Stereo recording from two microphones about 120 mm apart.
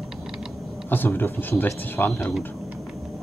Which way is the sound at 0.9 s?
15° left (ahead or behind).